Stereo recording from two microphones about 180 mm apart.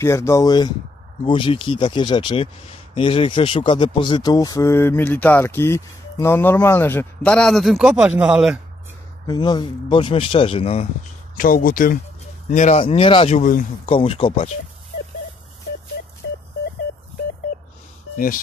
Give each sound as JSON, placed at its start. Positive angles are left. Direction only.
{"t": 0.0, "sound": "speech", "side_deg": 15}
{"t": 9.3, "sound": "speech", "side_deg": 25}
{"t": 11.3, "sound": "speech", "side_deg": 50}
{"t": 18.1, "sound": "speech", "side_deg": 50}